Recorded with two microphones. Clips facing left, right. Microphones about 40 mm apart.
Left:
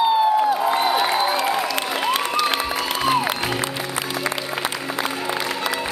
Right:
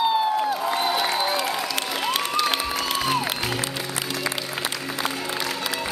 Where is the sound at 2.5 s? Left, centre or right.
Centre.